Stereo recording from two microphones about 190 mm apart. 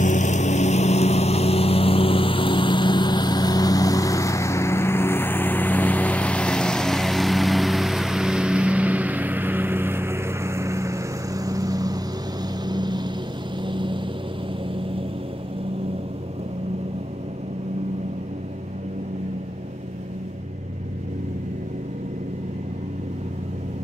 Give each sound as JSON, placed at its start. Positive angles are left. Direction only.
{"t": 0.0, "sound": "vehicle", "side_deg": 40}